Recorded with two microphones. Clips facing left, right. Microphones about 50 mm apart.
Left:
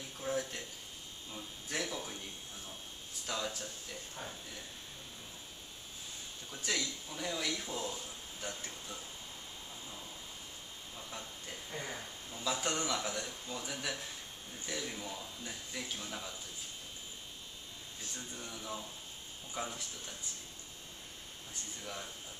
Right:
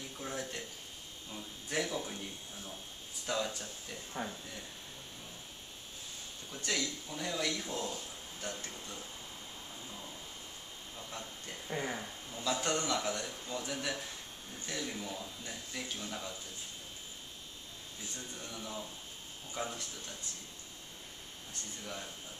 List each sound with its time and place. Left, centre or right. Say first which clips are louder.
0.2 s a sound: left 4 dB; centre
1.3 s speech: right 3 dB; centre
3.3 s speech: right 3 dB; centre
4.2 s speech: right 7 dB; right
6.5 s speech: right 1 dB; centre
11.1 s speech: right 1 dB; centre
11.7 s speech: right 6 dB; centre
12.4 s speech: right 2 dB; centre
18.1 s speech: even; centre
21.8 s speech: even; centre